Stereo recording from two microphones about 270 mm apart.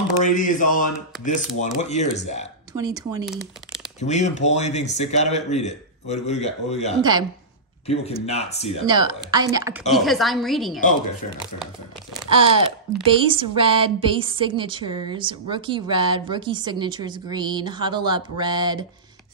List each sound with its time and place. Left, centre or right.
0.2 s speech: left
2.7 s a woman's voice: centre
4.0 s speech: left
7.0 s a woman's voice: centre
7.8 s speech: left
8.8 s a woman's voice: centre
12.3 s a woman's voice: centre